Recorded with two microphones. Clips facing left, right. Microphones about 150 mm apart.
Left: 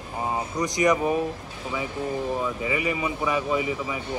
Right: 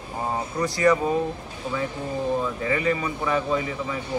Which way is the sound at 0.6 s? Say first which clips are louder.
Right 2 dB; 15° left (ahead or behind).